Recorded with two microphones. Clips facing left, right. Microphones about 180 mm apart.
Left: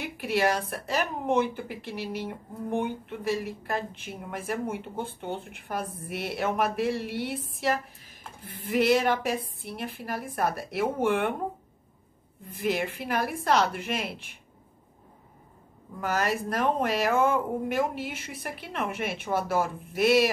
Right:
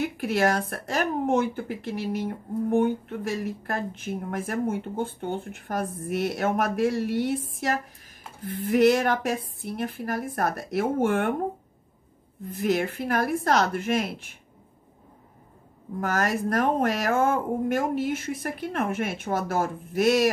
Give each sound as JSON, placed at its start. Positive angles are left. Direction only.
{"t": 0.0, "sound": "speech", "side_deg": -45}
{"t": 12.4, "sound": "speech", "side_deg": -45}
{"t": 16.0, "sound": "speech", "side_deg": -45}